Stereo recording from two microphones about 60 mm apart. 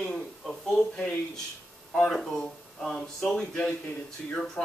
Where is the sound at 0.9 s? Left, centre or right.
Centre.